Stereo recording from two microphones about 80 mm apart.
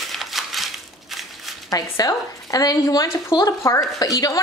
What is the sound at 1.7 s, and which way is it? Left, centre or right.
A woman's voice, left.